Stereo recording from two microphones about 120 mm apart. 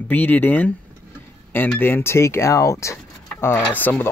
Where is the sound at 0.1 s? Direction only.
15° left (ahead or behind).